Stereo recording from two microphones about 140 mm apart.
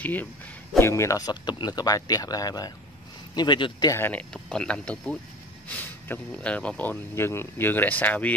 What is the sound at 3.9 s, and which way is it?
Speech, 10° left (ahead or behind).